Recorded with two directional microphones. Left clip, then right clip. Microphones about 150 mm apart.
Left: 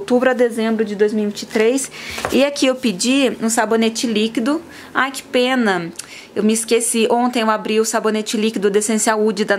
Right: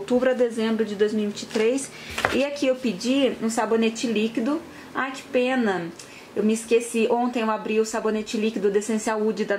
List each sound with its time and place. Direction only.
0.1 s speech: 30° left (ahead or behind)